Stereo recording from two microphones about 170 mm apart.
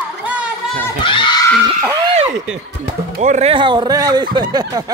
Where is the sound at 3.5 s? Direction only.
30° right (ahead or behind).